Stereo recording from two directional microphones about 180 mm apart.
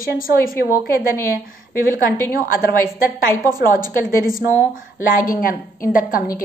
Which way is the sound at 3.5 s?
20° right (ahead or behind).